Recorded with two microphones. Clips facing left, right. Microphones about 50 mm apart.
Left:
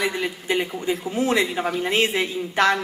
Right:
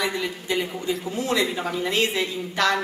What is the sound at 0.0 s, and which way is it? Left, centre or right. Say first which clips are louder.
A woman's voice: left 2 dB; left.